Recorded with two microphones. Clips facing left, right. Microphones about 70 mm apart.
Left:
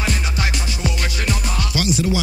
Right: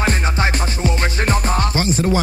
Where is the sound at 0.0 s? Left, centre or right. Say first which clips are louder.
Right 5 dB; right.